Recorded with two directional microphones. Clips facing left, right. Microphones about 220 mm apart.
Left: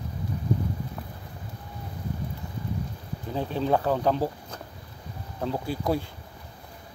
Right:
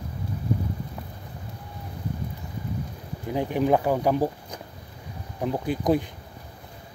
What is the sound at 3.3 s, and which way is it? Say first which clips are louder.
Speech: right 3 dB; 15° right (ahead or behind).